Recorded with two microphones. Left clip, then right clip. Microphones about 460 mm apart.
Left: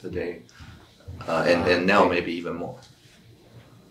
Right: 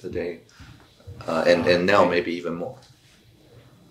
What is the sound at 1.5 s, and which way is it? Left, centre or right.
Speech, right.